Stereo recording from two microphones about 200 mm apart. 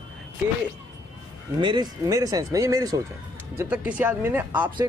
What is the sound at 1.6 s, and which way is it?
Speech, 20° right (ahead or behind).